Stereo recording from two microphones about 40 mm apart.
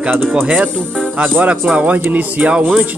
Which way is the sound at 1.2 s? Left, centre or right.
Right.